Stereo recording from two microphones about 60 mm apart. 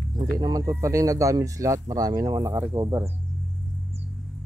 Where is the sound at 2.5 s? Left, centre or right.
Right.